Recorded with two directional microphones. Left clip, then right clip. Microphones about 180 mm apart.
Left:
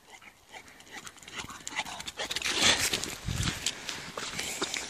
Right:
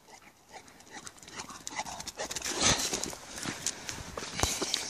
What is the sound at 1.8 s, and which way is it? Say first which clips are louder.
Dog: left 3 dB; 5° right (ahead or behind).